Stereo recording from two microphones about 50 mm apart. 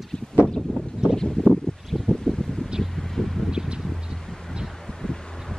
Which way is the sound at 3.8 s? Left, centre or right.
Centre.